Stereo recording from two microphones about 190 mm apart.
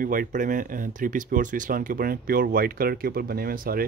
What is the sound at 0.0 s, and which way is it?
Speech, 45° right (ahead or behind).